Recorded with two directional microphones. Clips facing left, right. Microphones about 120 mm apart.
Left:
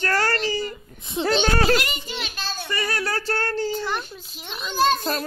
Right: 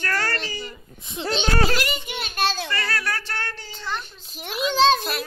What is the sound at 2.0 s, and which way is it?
Speech, 55° right (ahead or behind).